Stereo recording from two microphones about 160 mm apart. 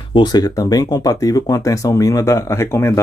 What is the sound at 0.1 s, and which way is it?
Speech, 25° left (ahead or behind).